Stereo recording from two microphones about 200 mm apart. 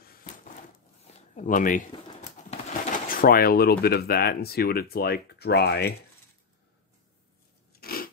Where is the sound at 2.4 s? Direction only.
35° left (ahead or behind).